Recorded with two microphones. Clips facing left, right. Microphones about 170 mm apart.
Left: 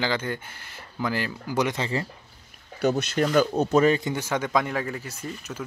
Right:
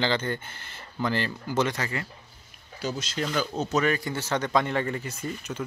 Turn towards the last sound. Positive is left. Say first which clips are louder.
# right 2 dB
turn(degrees=5)  # may be behind; listen again after turning